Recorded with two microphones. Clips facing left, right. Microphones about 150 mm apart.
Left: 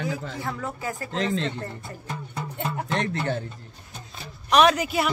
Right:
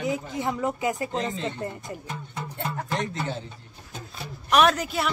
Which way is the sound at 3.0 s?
70° left (ahead or behind).